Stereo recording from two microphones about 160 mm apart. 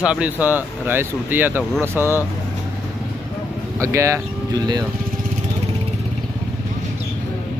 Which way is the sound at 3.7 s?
20° right (ahead or behind).